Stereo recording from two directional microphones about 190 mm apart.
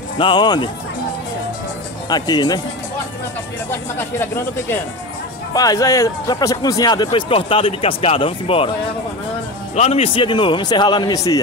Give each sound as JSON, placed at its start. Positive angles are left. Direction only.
{"t": 0.2, "sound": "speech", "side_deg": 25}
{"t": 2.0, "sound": "speech", "side_deg": 20}
{"t": 3.7, "sound": "speech", "side_deg": 10}
{"t": 9.8, "sound": "speech", "side_deg": 30}